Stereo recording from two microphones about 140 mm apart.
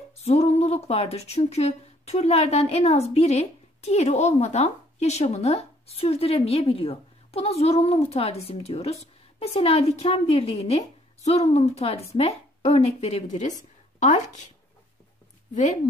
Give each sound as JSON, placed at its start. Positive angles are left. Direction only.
{"t": 0.2, "sound": "a woman's voice", "side_deg": 50}
{"t": 15.5, "sound": "speech", "side_deg": 60}